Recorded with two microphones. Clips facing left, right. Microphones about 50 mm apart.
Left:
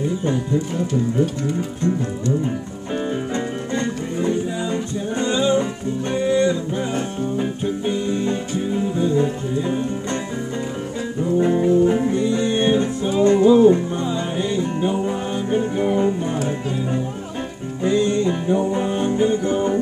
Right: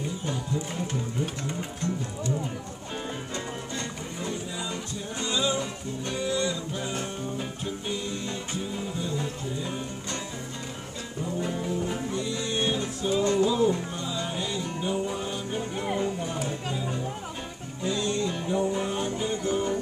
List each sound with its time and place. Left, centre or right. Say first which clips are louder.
3.3 s music: left 10 dB; left
11.3 s music: left 15 dB; left
17.8 s music: left 10 dB; left